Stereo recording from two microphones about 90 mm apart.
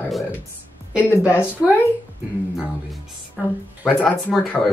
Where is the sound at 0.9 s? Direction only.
15° right (ahead or behind).